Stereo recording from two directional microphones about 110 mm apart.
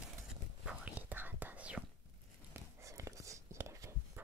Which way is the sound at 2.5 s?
30° right (ahead or behind).